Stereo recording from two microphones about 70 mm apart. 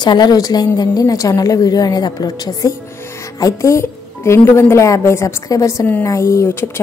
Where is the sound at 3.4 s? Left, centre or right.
Left.